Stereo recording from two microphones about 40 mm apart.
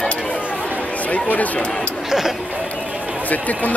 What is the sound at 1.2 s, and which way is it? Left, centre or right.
Speech, left.